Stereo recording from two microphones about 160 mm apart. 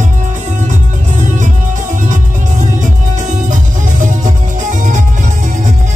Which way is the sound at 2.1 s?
50° right (ahead or behind).